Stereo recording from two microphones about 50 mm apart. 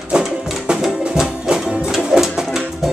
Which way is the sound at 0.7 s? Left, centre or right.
Centre.